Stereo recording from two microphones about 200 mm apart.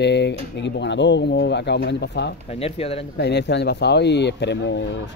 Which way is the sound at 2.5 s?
30° left (ahead or behind).